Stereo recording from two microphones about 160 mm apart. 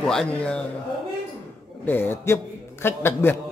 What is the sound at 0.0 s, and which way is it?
Speech, 5° left (ahead or behind).